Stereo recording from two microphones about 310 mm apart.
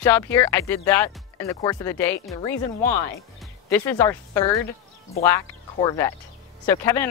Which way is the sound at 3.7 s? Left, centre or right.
Centre.